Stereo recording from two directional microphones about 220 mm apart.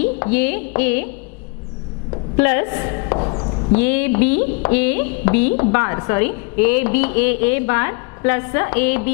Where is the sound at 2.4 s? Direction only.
15° left (ahead or behind).